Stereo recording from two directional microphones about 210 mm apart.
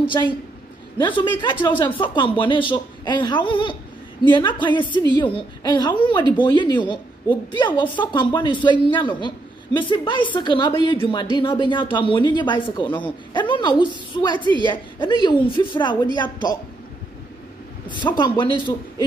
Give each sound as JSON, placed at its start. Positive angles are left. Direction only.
{"t": 0.0, "sound": "a woman's voice", "side_deg": 20}
{"t": 1.4, "sound": "a woman's voice", "side_deg": 25}
{"t": 14.4, "sound": "a woman's voice", "side_deg": -20}
{"t": 14.7, "sound": "a woman's voice", "side_deg": 25}
{"t": 17.8, "sound": "a woman's voice", "side_deg": 20}